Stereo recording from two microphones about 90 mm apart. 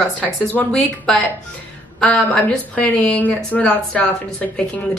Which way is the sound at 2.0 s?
15° left (ahead or behind).